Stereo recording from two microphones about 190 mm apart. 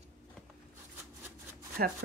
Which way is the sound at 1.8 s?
50° right (ahead or behind).